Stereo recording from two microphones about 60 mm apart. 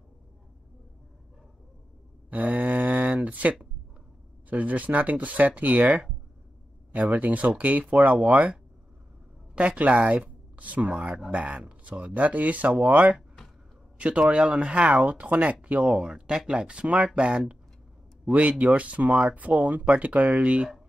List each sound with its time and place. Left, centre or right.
2.3 s a sound: right
4.5 s speech: right
9.6 s a man's voice: right